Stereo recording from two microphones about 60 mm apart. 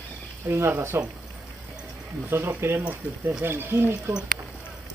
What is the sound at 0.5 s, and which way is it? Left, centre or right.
Speech, right.